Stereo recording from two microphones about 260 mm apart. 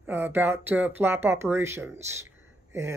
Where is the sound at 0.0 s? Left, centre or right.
Centre.